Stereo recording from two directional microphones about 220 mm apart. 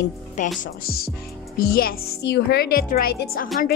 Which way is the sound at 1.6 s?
45° left (ahead or behind).